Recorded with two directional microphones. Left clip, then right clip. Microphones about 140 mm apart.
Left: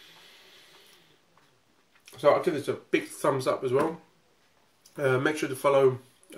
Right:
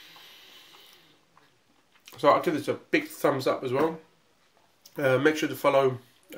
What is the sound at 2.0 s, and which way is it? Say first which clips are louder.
Speech: right 1 dB; 35° right (ahead or behind).